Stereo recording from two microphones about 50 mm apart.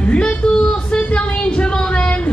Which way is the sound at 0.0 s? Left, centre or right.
Left.